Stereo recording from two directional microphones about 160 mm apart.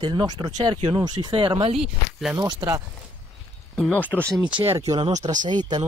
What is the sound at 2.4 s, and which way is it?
Speech, 25° right (ahead or behind).